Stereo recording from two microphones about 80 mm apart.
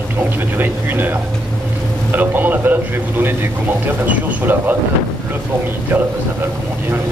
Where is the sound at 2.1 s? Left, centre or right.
Right.